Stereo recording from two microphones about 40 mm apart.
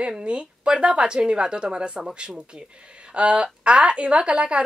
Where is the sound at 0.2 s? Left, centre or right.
Right.